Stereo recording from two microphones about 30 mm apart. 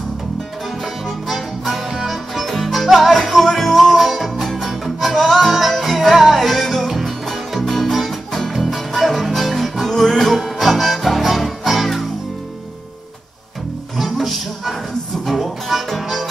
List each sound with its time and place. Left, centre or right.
2.0 s music: centre
5.7 s music: centre
5.9 s music: centre
9.8 s music: centre
10.3 s music: centre
13.9 s music: centre